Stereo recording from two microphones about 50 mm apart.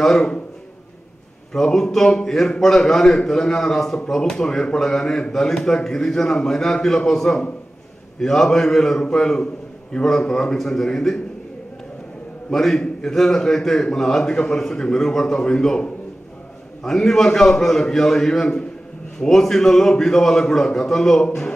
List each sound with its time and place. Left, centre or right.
0.0 s a man's voice: centre
1.5 s a man's voice: centre
12.4 s a man's voice: centre